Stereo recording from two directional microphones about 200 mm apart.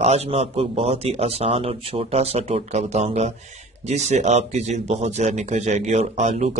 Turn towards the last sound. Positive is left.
turn(degrees=-35)  # may be behind; listen again after turning